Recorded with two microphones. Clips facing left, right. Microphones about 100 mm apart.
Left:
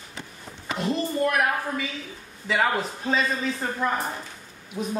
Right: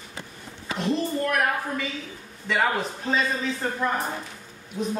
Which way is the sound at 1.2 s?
5° left (ahead or behind).